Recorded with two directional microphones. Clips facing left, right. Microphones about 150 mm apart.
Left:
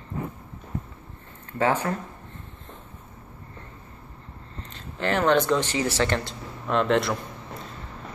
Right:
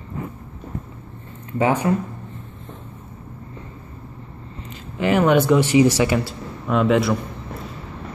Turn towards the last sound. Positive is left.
turn(degrees=-5)  # may be behind; listen again after turning